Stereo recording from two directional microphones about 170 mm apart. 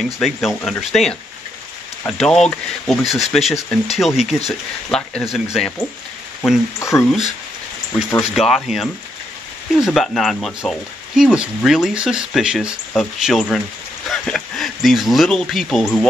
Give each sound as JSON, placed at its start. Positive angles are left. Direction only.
{"t": 0.0, "sound": "speech", "side_deg": 0}
{"t": 6.8, "sound": "speech", "side_deg": 15}
{"t": 7.1, "sound": "speech", "side_deg": 0}